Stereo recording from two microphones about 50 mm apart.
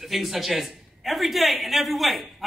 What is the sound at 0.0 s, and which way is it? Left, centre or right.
A man's voice, centre.